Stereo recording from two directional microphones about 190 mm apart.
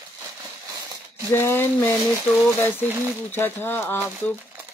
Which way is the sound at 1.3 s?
10° left (ahead or behind).